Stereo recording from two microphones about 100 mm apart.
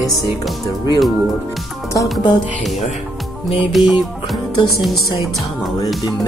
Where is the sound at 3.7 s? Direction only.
Centre (ahead or behind).